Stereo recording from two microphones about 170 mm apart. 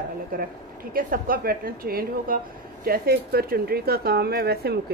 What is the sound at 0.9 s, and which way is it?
A woman's voice, 55° right (ahead or behind).